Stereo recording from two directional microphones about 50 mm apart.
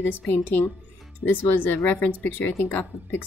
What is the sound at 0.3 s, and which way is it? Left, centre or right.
Speech, left.